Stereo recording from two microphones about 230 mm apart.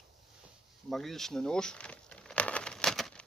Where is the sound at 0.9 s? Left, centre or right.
Centre.